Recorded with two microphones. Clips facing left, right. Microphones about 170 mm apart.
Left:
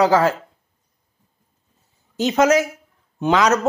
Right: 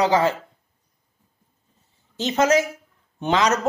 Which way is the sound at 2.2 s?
10° left (ahead or behind).